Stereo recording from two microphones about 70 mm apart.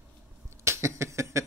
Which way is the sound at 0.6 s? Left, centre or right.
Right.